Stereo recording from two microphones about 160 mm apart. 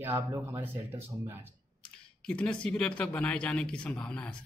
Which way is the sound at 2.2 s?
5° left (ahead or behind).